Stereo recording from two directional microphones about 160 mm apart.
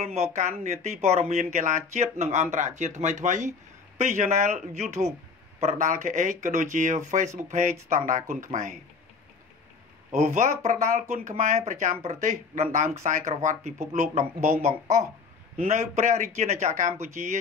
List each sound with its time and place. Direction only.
0.0 s speech: 40° right (ahead or behind)
10.1 s speech: 45° right (ahead or behind)